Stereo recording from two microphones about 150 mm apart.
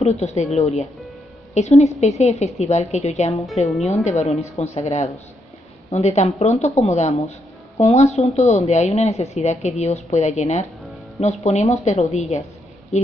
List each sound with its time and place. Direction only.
0.0 s speech: 45° left (ahead or behind)